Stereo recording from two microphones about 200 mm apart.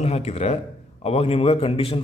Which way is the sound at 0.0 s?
30° left (ahead or behind).